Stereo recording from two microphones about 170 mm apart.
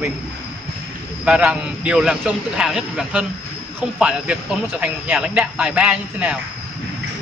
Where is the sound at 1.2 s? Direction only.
5° right (ahead or behind).